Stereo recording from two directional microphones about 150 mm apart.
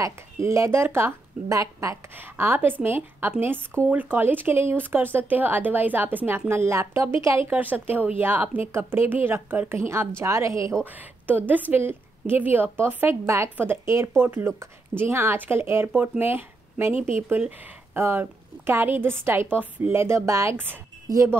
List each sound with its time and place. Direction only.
0.0 s speech: 20° right (ahead or behind)